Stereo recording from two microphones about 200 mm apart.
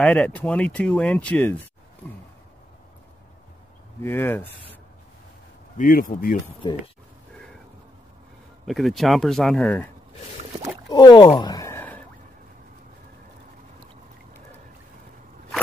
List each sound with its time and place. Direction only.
0.0 s speech: 5° left (ahead or behind)
4.0 s speech: 10° left (ahead or behind)
5.8 s speech: 45° left (ahead or behind)
8.6 s speech: centre (ahead or behind)
10.9 s speech: 20° left (ahead or behind)